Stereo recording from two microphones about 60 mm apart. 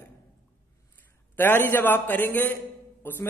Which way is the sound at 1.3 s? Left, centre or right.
Left.